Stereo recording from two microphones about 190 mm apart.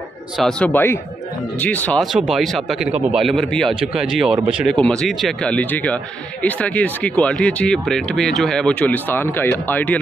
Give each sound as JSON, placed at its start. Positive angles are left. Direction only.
{"t": 0.4, "sound": "speech", "side_deg": 5}
{"t": 4.7, "sound": "speech", "side_deg": 5}